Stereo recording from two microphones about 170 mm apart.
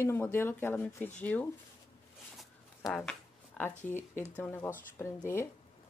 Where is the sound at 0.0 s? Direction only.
15° left (ahead or behind).